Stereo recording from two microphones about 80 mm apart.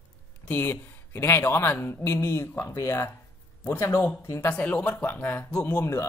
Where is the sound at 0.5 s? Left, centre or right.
Left.